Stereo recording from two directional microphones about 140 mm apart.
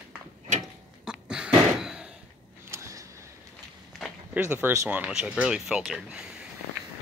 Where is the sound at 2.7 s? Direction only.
20° right (ahead or behind).